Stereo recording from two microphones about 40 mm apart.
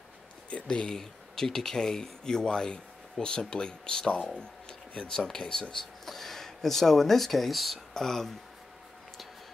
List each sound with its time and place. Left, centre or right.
0.5 s speech: left
0.8 s speech: centre